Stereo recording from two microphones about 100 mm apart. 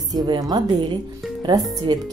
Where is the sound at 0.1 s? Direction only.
40° right (ahead or behind).